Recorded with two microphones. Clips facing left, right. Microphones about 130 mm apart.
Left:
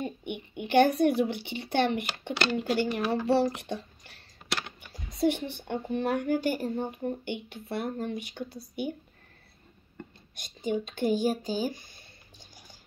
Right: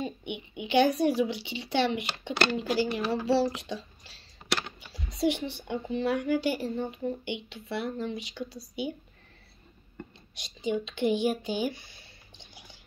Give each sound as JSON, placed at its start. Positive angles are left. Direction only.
{"t": 0.0, "sound": "speech", "side_deg": 50}
{"t": 10.3, "sound": "speech", "side_deg": 50}